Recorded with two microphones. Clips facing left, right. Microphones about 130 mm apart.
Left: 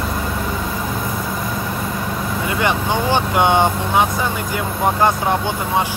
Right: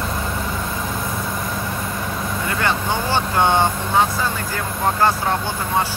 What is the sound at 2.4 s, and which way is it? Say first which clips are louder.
Speech: left 3 dB; 15° left (ahead or behind).